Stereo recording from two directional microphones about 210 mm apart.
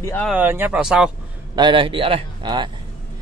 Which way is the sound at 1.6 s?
25° right (ahead or behind).